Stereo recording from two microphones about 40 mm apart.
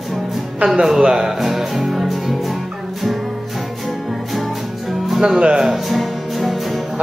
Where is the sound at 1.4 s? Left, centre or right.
Centre.